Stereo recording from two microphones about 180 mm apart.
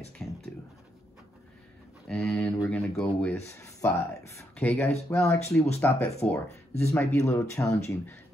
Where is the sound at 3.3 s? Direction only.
15° left (ahead or behind).